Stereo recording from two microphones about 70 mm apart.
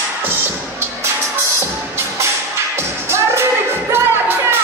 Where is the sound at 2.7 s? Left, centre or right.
Right.